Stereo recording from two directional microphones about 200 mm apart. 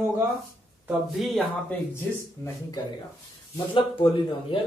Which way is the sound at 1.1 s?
Centre (ahead or behind).